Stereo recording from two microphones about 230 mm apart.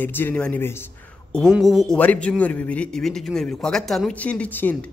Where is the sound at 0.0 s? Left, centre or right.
Centre.